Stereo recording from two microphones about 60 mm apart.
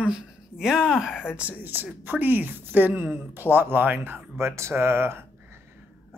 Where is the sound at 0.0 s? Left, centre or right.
Centre.